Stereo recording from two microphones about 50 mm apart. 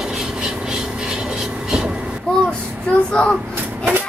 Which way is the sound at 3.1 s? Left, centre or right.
Centre.